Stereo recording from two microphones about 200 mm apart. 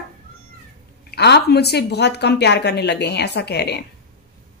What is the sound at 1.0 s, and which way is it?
Speech, 55° left (ahead or behind).